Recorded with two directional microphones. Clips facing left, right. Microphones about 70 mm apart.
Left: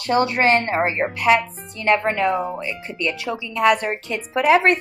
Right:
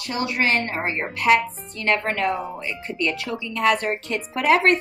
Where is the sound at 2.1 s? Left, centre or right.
Left.